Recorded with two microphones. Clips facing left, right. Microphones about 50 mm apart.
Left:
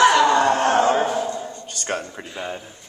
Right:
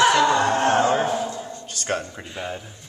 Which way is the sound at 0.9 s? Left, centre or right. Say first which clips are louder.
Left 1 dB; centre.